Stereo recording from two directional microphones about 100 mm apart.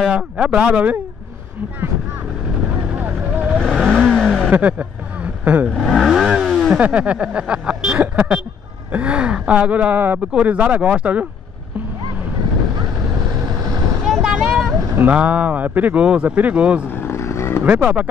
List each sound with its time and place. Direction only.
0.0 s speech: 10° right (ahead or behind)
2.9 s vehicle: 15° right (ahead or behind)
3.4 s vehicle: 5° right (ahead or behind)
4.5 s a sound: 15° right (ahead or behind)
5.7 s vehicle: 5° left (ahead or behind)
6.8 s speech: 15° right (ahead or behind)
14.0 s vehicle: 5° right (ahead or behind)
14.8 s vehicle: 30° right (ahead or behind)
15.0 s speech: 15° right (ahead or behind)
16.9 s vehicle: 25° left (ahead or behind)
17.6 s speech: 15° right (ahead or behind)